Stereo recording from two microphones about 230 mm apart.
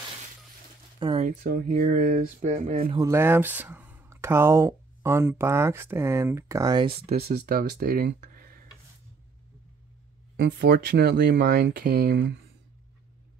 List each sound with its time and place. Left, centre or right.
0.9 s a sound: right
1.2 s speech: right
3.0 s speech: centre
7.0 s speech: right
10.3 s speech: right